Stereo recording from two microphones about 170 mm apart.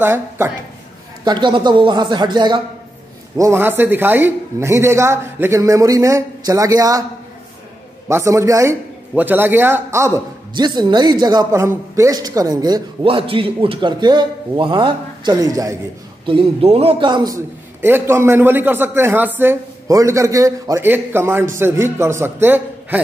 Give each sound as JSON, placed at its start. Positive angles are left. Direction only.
{"t": 0.0, "sound": "a man's voice", "side_deg": -15}
{"t": 1.2, "sound": "a man's voice", "side_deg": -25}
{"t": 3.3, "sound": "a man's voice", "side_deg": -15}
{"t": 8.1, "sound": "a man's voice", "side_deg": -15}
{"t": 16.3, "sound": "a man's voice", "side_deg": -35}
{"t": 17.8, "sound": "a man's voice", "side_deg": -15}